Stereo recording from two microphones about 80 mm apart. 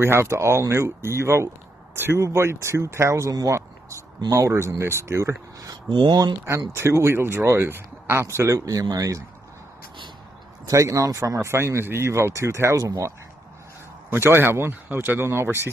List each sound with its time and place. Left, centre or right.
0.0 s speech: right
5.9 s speech: right
6.8 s speech: right
8.5 s speech: right
10.7 s speech: right
14.1 s speech: right